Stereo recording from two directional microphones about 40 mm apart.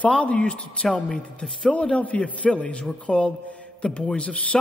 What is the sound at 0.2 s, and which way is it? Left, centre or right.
A man's voice, left.